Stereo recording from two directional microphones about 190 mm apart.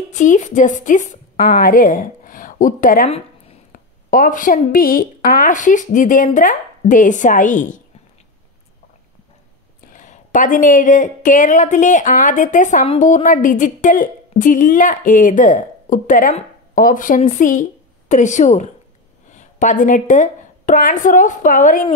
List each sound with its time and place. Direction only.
0.1 s speech: 40° left (ahead or behind)
9.9 s a woman's voice: 40° left (ahead or behind)